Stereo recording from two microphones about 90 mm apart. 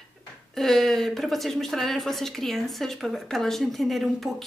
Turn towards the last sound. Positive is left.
turn(degrees=0)  # may be behind; listen again after turning